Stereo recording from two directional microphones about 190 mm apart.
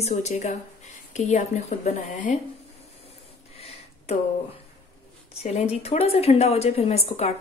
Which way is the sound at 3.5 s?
30° left (ahead or behind).